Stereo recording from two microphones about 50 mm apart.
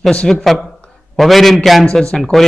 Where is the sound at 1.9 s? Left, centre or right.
Centre.